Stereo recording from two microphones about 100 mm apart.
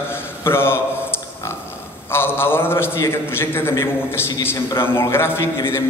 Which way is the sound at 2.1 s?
20° left (ahead or behind).